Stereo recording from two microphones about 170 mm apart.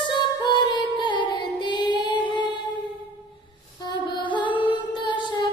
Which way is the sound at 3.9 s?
25° left (ahead or behind).